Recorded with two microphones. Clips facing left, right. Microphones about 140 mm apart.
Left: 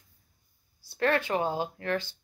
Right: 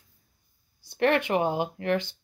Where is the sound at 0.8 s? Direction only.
20° right (ahead or behind).